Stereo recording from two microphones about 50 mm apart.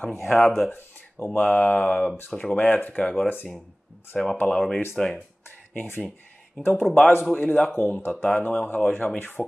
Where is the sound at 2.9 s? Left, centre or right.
Centre.